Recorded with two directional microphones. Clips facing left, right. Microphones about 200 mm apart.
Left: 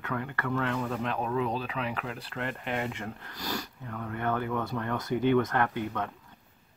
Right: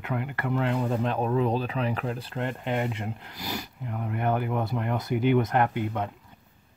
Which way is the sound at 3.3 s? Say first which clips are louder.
Right 1 dB; 5° right (ahead or behind).